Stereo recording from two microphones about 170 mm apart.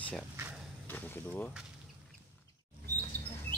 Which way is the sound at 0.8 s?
10° left (ahead or behind).